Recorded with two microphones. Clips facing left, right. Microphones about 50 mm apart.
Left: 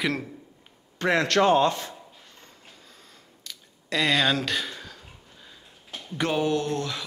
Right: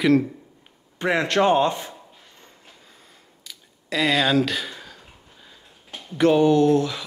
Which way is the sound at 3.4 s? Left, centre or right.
Centre.